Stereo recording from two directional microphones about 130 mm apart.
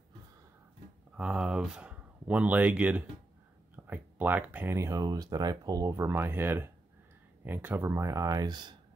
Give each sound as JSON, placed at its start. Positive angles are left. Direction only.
{"t": 1.1, "sound": "speech", "side_deg": -5}